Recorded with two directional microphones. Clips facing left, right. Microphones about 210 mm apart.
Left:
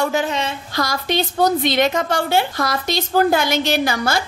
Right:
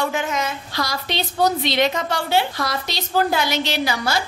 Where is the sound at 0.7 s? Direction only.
50° left (ahead or behind).